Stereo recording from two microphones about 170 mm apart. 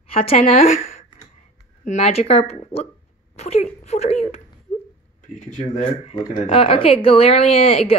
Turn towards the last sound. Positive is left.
turn(degrees=35)  # may be behind; listen again after turning